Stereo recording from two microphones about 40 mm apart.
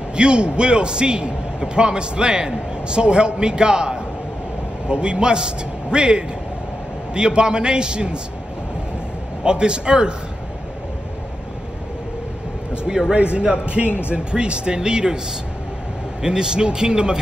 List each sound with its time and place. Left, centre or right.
0.1 s a man's voice: right
9.4 s a man's voice: right
13.1 s a man's voice: right
13.8 s speech: left
14.1 s a man's voice: right
16.2 s a man's voice: centre